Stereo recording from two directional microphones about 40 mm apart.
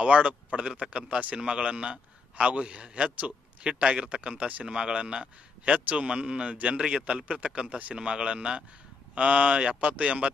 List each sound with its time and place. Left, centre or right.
0.0 s a man's voice: right
7.1 s a man's voice: right